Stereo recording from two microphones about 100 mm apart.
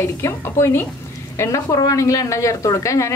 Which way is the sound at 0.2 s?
25° left (ahead or behind).